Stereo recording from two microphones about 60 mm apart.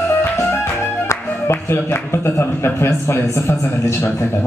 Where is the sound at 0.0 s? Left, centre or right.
Left.